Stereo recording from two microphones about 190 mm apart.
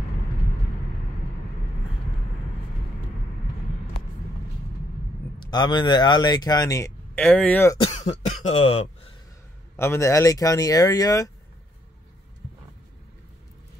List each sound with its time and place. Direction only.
5.4 s speech: 25° left (ahead or behind)
7.7 s speech: 35° left (ahead or behind)
9.8 s speech: 15° left (ahead or behind)